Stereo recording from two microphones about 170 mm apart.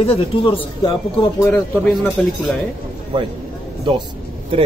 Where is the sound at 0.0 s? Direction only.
35° left (ahead or behind).